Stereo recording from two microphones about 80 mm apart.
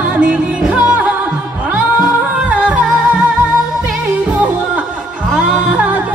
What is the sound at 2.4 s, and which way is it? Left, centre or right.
Music, centre.